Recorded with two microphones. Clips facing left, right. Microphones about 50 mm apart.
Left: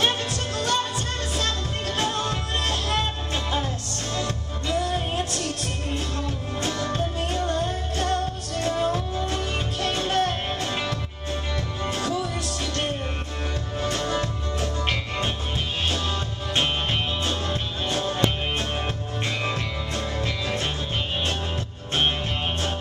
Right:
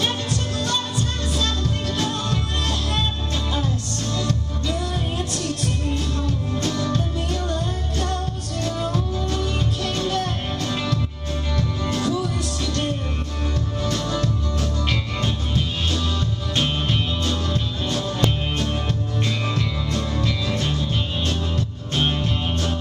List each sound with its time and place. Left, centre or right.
0.6 s music: left
4.2 s music: left
13.8 s music: left
19.4 s music: left